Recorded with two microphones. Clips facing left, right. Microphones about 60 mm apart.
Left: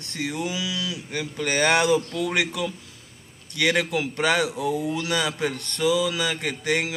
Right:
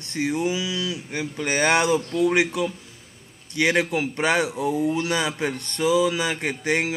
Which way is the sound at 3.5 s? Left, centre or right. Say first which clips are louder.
Right 2 dB; centre.